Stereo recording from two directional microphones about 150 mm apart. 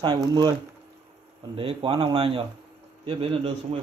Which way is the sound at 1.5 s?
35° right (ahead or behind).